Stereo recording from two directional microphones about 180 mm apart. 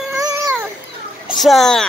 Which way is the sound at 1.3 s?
Centre (ahead or behind).